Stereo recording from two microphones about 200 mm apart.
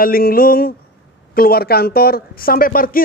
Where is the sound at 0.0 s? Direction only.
45° left (ahead or behind).